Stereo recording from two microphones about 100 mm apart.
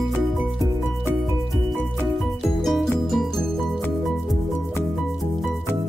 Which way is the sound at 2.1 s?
Centre (ahead or behind).